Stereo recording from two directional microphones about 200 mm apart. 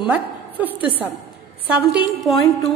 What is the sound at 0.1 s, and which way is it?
A woman's voice, 10° right (ahead or behind).